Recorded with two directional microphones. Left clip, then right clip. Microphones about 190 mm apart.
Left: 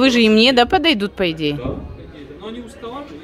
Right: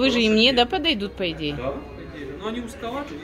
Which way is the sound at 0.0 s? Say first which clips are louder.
Left 5 dB; 50° left (ahead or behind).